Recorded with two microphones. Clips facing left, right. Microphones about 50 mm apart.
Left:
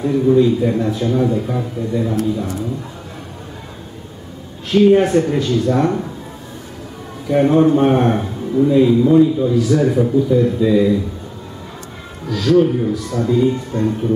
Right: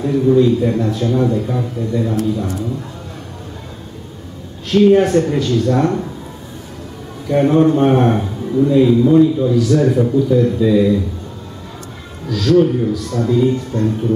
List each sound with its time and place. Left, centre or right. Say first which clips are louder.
0.0 s a man's voice: right 1 dB; centre
4.6 s a man's voice: right 1 dB; centre
7.2 s a man's voice: even; centre
12.3 s a man's voice: right 1 dB; centre